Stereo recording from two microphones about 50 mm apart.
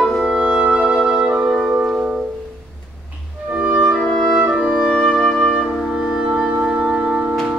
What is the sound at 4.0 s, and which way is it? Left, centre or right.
Music, centre.